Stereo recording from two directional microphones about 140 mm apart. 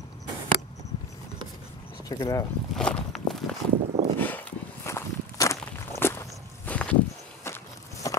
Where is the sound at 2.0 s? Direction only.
25° left (ahead or behind).